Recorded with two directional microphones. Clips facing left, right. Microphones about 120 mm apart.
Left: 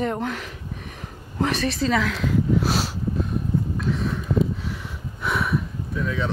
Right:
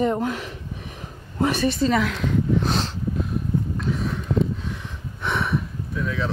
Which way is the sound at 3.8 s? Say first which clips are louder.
Left 1 dB; centre (ahead or behind).